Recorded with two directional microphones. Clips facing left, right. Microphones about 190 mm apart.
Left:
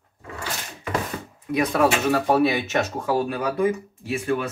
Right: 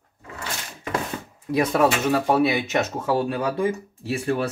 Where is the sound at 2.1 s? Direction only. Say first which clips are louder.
Even; 15° right (ahead or behind); by 4.5 s 35° right (ahead or behind).